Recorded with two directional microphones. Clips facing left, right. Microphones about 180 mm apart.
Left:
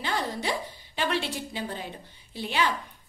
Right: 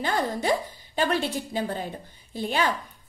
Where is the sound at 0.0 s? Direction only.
45° right (ahead or behind).